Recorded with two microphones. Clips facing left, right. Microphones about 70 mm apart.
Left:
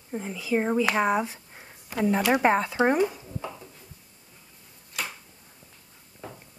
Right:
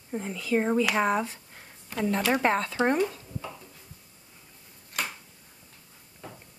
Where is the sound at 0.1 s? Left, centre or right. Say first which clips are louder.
Even; centre.